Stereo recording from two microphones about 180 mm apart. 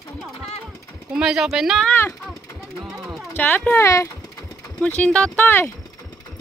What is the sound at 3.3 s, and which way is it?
Speech, 10° left (ahead or behind).